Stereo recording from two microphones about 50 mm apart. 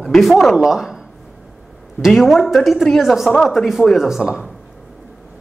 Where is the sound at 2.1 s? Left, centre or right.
Centre.